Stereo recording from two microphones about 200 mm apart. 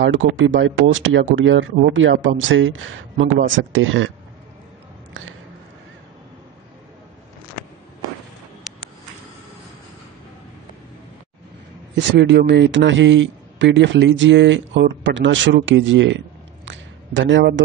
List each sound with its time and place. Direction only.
0.0 s speech: 70° right (ahead or behind)
11.9 s a man's voice: 60° right (ahead or behind)
16.6 s a sound: 70° right (ahead or behind)